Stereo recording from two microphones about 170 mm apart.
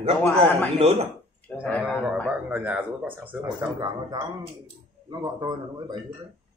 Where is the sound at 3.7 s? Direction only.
30° right (ahead or behind).